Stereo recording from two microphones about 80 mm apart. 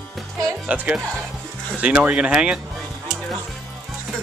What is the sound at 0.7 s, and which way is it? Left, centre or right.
Speech, centre.